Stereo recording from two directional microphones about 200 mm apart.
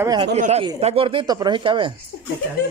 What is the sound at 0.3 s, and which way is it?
Speech, 35° right (ahead or behind).